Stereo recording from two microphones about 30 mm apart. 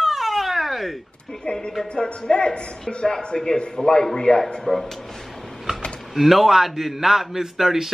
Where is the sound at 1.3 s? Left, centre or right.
Left.